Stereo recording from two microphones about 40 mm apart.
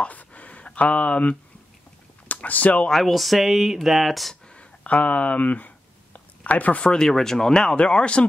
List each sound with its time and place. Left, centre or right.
0.0 s a sound: left
2.2 s speech: left
2.9 s speech: centre
4.6 s speech: left
6.1 s a sound: left
6.8 s speech: centre